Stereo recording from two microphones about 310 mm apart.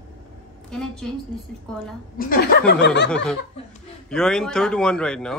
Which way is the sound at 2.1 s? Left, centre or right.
Left.